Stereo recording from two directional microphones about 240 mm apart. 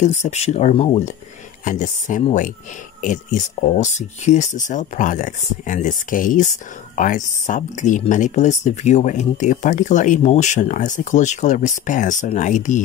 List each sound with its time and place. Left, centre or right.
0.0 s speech: left